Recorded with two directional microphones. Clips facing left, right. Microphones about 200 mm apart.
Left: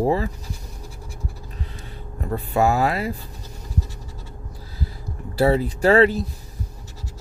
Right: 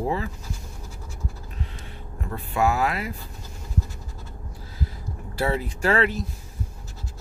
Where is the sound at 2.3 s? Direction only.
35° left (ahead or behind).